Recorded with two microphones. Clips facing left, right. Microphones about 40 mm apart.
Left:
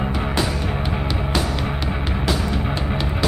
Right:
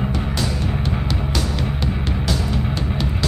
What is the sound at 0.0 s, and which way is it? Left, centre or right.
Music, centre.